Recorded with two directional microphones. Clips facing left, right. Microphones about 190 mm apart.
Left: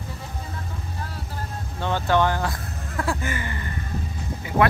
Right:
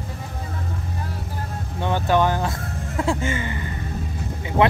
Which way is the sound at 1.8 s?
15° right (ahead or behind).